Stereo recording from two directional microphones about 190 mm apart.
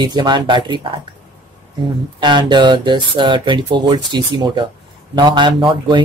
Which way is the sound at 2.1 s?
25° right (ahead or behind).